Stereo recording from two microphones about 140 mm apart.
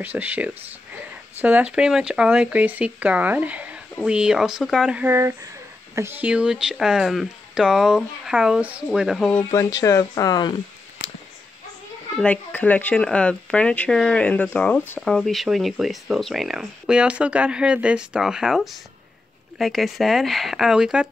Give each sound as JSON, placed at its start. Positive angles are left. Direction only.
{"t": 0.0, "sound": "speech", "side_deg": -10}
{"t": 9.4, "sound": "speech", "side_deg": 25}
{"t": 12.2, "sound": "speech", "side_deg": 10}
{"t": 15.0, "sound": "speech", "side_deg": 5}